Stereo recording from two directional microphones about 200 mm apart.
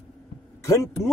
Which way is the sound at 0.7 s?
15° left (ahead or behind).